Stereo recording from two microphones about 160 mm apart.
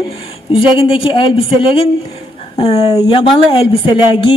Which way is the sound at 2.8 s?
25° left (ahead or behind).